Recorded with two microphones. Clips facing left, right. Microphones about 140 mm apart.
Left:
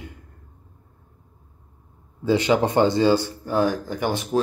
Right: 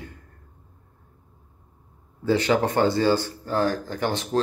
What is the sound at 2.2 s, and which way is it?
Speech, 20° left (ahead or behind).